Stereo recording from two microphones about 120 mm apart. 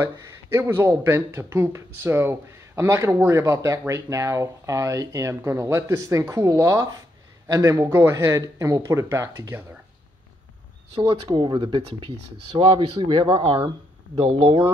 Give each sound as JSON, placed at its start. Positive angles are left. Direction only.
{"t": 0.0, "sound": "speech", "side_deg": -20}
{"t": 11.0, "sound": "speech", "side_deg": -40}